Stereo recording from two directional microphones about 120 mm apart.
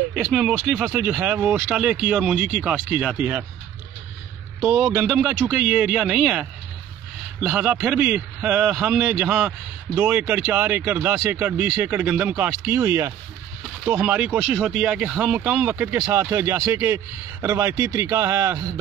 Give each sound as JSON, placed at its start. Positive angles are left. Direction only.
{"t": 0.1, "sound": "speech", "side_deg": -5}
{"t": 4.6, "sound": "a man's voice", "side_deg": -20}